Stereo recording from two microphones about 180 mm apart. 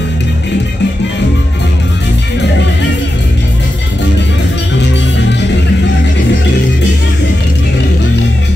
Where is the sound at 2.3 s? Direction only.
75° left (ahead or behind).